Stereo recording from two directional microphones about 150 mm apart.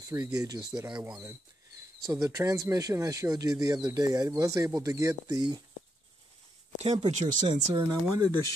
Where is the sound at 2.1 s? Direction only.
20° right (ahead or behind).